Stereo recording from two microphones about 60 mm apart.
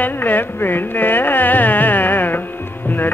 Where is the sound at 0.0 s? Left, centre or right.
Left.